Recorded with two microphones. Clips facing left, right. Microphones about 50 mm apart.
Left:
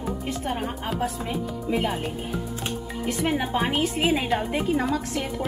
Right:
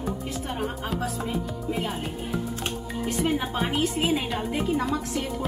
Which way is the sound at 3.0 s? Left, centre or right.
Left.